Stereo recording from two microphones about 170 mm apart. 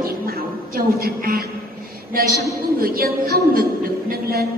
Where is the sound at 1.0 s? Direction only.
60° right (ahead or behind).